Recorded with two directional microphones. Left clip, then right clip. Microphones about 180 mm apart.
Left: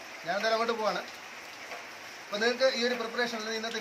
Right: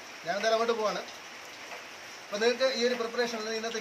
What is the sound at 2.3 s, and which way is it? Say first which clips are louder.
A man's voice: even; 15° right (ahead or behind).